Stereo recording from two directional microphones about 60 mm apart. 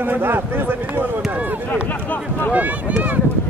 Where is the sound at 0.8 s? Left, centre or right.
Right.